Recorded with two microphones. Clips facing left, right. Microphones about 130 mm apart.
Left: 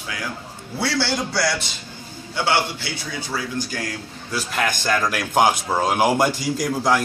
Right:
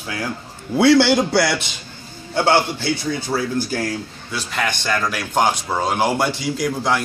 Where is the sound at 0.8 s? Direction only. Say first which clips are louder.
Right 10 dB; 60° right (ahead or behind).